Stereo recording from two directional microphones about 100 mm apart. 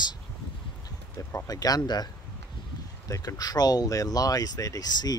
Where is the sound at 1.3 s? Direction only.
35° left (ahead or behind).